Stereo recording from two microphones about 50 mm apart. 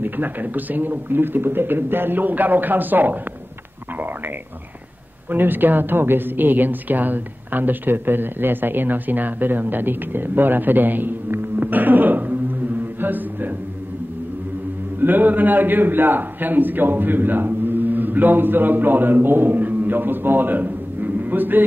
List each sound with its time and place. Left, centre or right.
0.0 s a woman's voice: right
5.3 s a woman's voice: right
13.0 s mantra: right
15.0 s a man's voice: right